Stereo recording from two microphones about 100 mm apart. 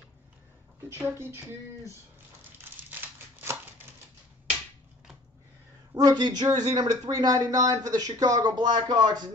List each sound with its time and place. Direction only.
0.8 s speech: 25° right (ahead or behind)
2.9 s crumpling: 20° right (ahead or behind)
5.9 s speech: 40° right (ahead or behind)